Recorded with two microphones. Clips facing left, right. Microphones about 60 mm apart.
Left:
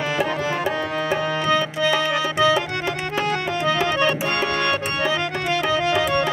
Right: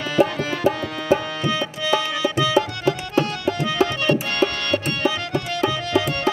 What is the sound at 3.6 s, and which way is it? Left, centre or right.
Accordion, left.